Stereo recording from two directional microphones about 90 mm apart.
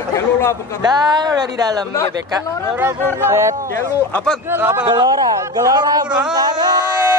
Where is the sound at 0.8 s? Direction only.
50° right (ahead or behind).